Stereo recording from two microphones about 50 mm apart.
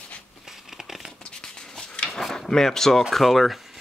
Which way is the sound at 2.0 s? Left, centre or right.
Centre.